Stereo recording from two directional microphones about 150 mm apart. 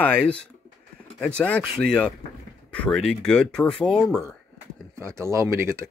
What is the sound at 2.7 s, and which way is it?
Speech, 5° left (ahead or behind).